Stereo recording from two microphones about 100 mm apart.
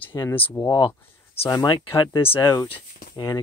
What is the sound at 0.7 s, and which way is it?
Speech, 40° left (ahead or behind).